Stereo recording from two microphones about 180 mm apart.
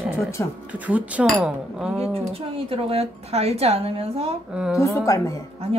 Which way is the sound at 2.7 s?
35° right (ahead or behind).